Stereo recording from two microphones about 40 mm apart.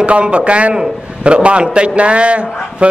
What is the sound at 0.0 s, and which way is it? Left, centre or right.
A man's voice, right.